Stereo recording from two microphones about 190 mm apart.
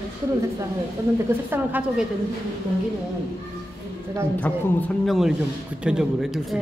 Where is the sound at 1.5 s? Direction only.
10° right (ahead or behind).